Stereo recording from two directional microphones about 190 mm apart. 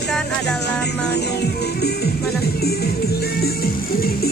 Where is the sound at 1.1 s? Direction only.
60° left (ahead or behind).